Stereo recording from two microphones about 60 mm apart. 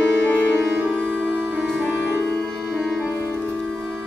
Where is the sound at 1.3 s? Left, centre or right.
Right.